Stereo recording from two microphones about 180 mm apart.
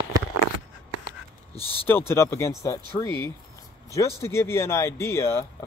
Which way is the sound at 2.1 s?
15° left (ahead or behind).